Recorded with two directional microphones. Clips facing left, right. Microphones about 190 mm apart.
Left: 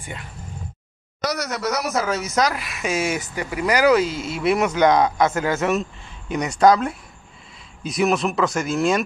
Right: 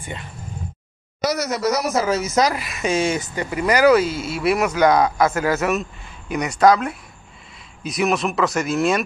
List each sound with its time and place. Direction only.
1.2 s speech: 5° right (ahead or behind)
3.5 s speech: 15° left (ahead or behind)
6.6 s speech: centre (ahead or behind)
8.1 s speech: centre (ahead or behind)